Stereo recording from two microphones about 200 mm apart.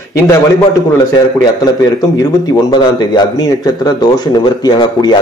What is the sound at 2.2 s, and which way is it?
A man's voice, 20° left (ahead or behind).